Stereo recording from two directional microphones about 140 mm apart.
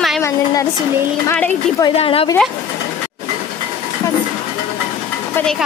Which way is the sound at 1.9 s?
45° left (ahead or behind).